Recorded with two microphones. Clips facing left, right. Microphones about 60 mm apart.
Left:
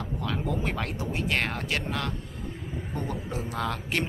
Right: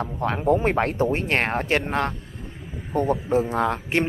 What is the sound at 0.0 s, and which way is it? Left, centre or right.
Speech, right.